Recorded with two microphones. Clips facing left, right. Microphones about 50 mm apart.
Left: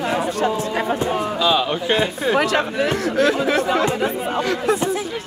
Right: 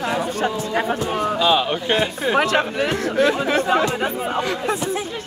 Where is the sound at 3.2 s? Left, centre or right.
Centre.